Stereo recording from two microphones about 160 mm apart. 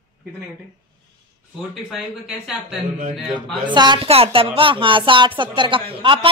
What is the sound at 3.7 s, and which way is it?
A woman's voice, 30° right (ahead or behind).